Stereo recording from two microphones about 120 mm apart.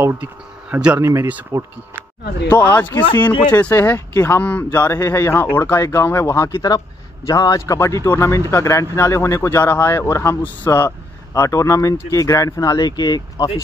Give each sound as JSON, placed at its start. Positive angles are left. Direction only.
{"t": 0.0, "sound": "speech", "side_deg": -20}
{"t": 0.9, "sound": "speech", "side_deg": -20}
{"t": 2.0, "sound": "speech", "side_deg": 15}